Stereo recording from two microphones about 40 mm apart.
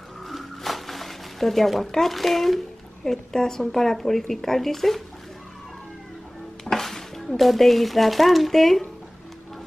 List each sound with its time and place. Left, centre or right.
0.3 s speech: centre
6.6 s speech: centre